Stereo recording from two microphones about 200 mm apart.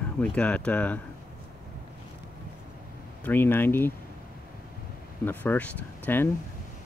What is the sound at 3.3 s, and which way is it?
Speech, 10° left (ahead or behind).